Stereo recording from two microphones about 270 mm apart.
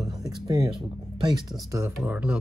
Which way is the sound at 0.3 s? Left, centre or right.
Centre.